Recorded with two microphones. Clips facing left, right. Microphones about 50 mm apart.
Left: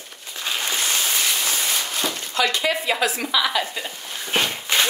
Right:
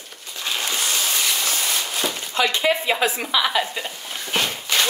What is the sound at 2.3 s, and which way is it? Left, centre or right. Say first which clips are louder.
Speech: right 2 dB; right.